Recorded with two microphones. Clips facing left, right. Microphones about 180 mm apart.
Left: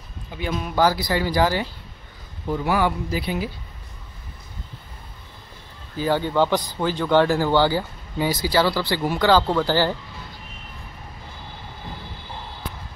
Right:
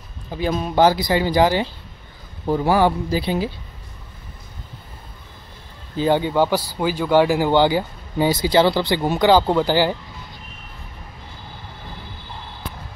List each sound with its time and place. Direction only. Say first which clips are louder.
0.3 s speech: right 5 dB; 35° right (ahead or behind)
2.4 s speech: right 5 dB; 35° right (ahead or behind)
5.9 s a man's voice: right 3 dB; 20° right (ahead or behind)